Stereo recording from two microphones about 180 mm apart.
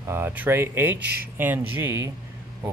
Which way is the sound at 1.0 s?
60° right (ahead or behind).